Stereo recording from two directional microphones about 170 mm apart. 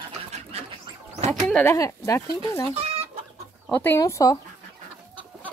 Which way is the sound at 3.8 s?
15° left (ahead or behind).